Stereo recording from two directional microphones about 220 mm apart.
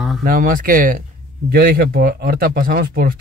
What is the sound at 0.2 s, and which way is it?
Speech, 40° right (ahead or behind).